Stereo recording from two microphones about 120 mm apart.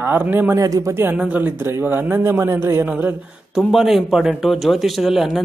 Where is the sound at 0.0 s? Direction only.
15° right (ahead or behind).